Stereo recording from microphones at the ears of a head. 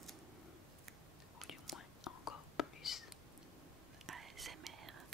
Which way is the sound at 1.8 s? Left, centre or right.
Left.